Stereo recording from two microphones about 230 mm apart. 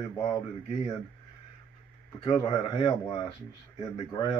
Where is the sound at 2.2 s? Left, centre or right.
Left.